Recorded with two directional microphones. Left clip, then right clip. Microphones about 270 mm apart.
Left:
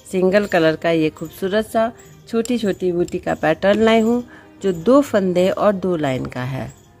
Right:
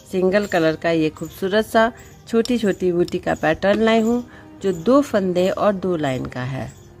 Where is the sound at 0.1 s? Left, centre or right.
Centre.